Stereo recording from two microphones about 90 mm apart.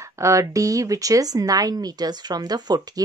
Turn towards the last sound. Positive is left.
turn(degrees=-45)  # may be behind; listen again after turning